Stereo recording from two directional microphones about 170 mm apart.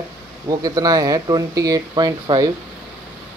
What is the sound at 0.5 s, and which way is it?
Speech, 20° right (ahead or behind).